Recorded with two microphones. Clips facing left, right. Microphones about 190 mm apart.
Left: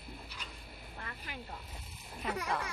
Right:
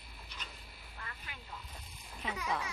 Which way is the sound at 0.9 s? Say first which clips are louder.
Left 4 dB; 40° left (ahead or behind).